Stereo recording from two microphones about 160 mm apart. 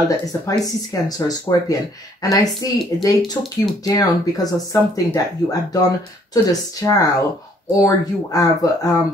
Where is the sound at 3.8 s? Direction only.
20° left (ahead or behind).